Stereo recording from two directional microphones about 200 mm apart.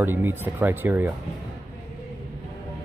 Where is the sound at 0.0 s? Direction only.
10° right (ahead or behind).